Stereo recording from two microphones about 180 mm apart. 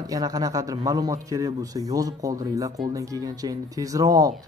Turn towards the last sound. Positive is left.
turn(degrees=-20)  # may be behind; listen again after turning